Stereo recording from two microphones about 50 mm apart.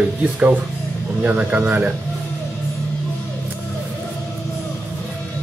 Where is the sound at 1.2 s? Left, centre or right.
Right.